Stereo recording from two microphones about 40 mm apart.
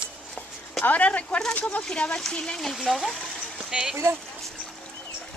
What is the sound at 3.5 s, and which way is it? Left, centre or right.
Speech, centre.